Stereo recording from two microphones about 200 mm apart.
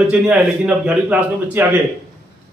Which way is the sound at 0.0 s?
5° right (ahead or behind).